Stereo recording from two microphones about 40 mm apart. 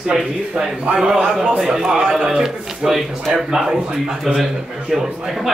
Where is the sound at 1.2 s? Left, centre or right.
Right.